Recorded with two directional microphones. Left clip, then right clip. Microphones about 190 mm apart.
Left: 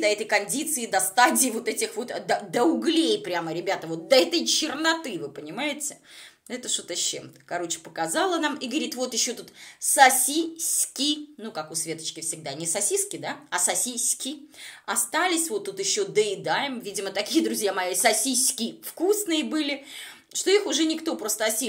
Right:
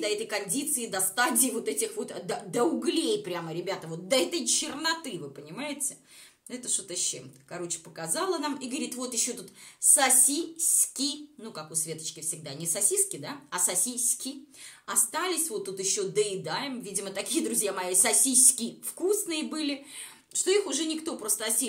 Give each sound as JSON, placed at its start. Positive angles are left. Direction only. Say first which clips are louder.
{"t": 0.0, "sound": "a woman's voice", "louder": "left 7 dB", "side_deg": 15}
{"t": 6.5, "sound": "a woman's voice", "louder": "left 5 dB", "side_deg": 20}
{"t": 11.8, "sound": "a woman's voice", "louder": "left 5 dB", "side_deg": 20}